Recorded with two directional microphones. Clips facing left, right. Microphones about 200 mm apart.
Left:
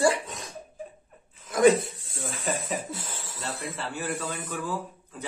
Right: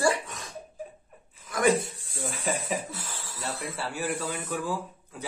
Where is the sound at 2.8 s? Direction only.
20° left (ahead or behind).